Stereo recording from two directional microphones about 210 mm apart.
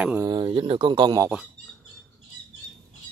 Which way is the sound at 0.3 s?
25° right (ahead or behind).